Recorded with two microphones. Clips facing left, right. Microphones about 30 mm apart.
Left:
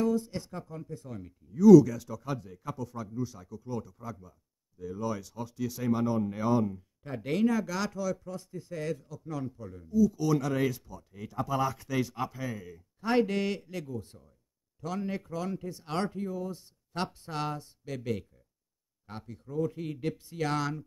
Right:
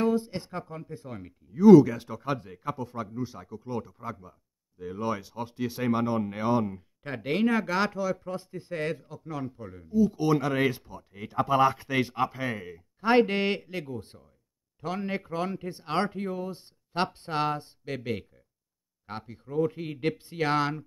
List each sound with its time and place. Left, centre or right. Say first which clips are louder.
0.0 s speech: right 3 dB; right